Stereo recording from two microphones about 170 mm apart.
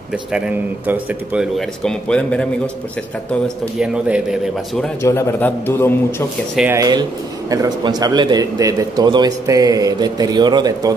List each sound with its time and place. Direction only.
0.8 s speech: 10° right (ahead or behind)
3.4 s speech: 5° right (ahead or behind)
5.0 s a man's voice: 15° left (ahead or behind)
6.7 s a man's voice: 25° right (ahead or behind)